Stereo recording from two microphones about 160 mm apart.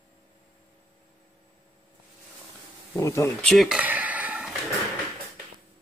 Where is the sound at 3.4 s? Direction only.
Centre (ahead or behind).